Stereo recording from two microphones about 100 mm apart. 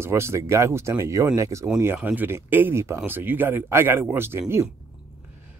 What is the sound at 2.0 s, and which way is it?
Speech, 15° right (ahead or behind).